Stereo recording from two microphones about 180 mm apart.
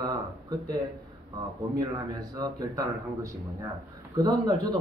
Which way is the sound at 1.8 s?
20° right (ahead or behind).